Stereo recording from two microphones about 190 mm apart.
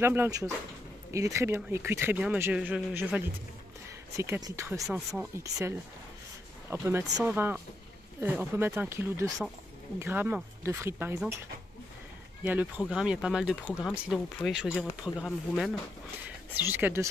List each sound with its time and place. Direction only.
0.0 s speech: 10° right (ahead or behind)
4.8 s speech: centre (ahead or behind)
5.4 s speech: 15° right (ahead or behind)
12.4 s speech: 5° right (ahead or behind)